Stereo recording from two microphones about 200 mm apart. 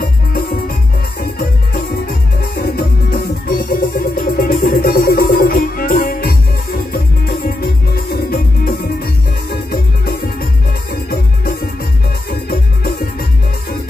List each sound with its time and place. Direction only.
0.0 s music: 50° left (ahead or behind)